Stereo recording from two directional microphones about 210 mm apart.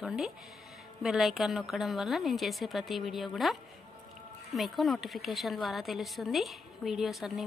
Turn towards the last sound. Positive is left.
turn(degrees=0)  # may be behind; listen again after turning